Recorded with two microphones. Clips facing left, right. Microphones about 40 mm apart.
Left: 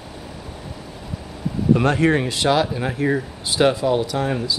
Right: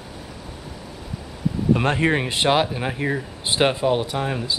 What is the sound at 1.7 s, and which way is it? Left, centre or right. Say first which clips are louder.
Speech: left 5 dB; right.